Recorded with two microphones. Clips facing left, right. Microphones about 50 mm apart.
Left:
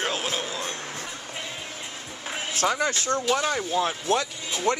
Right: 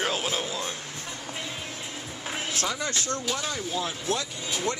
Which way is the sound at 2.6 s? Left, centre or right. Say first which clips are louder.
Left 9 dB; left.